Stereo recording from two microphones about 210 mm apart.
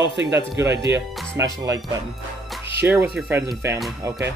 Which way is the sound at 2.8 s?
10° right (ahead or behind).